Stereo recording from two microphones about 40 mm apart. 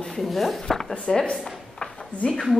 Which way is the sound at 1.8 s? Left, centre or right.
Left.